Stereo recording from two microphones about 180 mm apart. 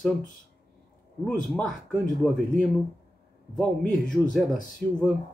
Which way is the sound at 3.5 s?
Centre (ahead or behind).